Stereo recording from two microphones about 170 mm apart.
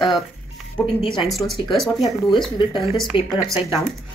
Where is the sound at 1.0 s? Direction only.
30° left (ahead or behind).